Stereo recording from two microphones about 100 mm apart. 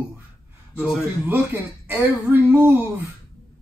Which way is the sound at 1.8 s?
20° right (ahead or behind).